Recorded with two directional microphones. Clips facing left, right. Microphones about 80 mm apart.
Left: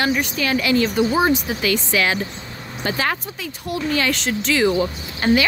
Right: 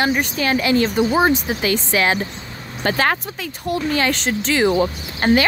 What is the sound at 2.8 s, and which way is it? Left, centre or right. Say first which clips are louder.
Speech: right 4 dB; right.